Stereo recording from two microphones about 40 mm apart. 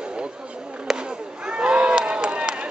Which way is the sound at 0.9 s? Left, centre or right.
Centre.